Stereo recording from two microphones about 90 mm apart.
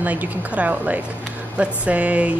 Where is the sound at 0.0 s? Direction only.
20° right (ahead or behind).